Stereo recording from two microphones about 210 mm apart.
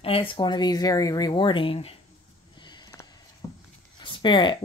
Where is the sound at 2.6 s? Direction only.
20° left (ahead or behind).